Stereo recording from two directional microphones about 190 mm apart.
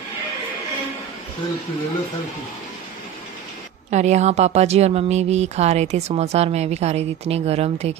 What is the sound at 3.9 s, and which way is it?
Speech, 35° right (ahead or behind).